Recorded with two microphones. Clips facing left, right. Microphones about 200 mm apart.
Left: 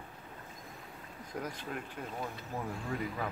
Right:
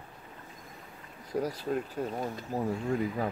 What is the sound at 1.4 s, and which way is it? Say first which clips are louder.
Speech: right 8 dB; 35° right (ahead or behind).